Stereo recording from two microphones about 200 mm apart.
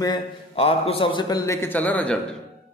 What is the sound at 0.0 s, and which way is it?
A man's voice, 25° left (ahead or behind).